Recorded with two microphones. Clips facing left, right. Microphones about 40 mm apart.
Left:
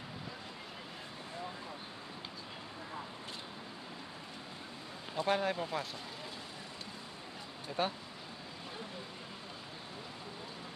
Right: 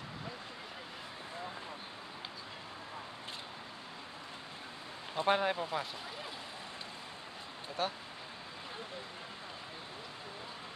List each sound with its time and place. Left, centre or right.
5.1 s speech: right
5.6 s speech: centre
7.8 s speech: centre